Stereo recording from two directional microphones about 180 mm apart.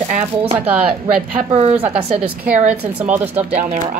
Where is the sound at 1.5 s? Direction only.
35° right (ahead or behind).